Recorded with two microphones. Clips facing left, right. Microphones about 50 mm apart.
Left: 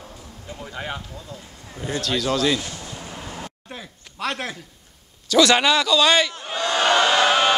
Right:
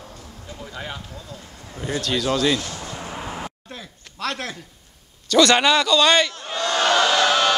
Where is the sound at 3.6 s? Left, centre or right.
Centre.